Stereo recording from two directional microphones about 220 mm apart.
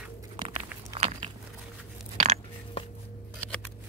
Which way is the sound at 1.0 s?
25° right (ahead or behind).